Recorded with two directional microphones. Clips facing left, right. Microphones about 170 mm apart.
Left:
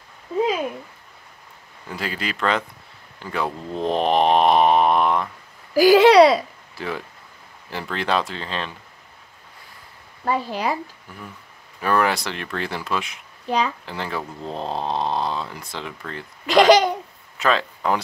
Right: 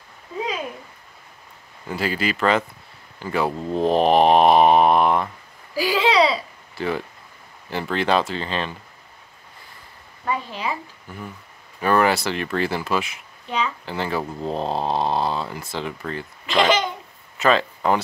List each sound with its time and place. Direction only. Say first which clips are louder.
1.9 s speech: right 5 dB; centre (ahead or behind)
5.9 s speech: left 7 dB; 45° left (ahead or behind)
6.8 s speech: right 4 dB; centre (ahead or behind)
10.2 s speech: left 3 dB; 35° left (ahead or behind)
11.8 s speech: right 2 dB; centre (ahead or behind)
16.4 s a child's voice: left 6 dB; 40° left (ahead or behind)
17.4 s speech: right 2 dB; centre (ahead or behind)